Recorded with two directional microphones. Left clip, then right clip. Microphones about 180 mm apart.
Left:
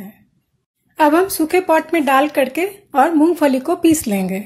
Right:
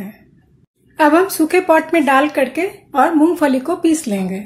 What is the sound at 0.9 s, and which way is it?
Speech, 20° left (ahead or behind).